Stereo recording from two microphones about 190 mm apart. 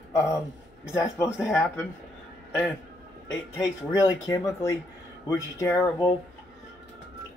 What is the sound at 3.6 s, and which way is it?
Speech, 15° left (ahead or behind).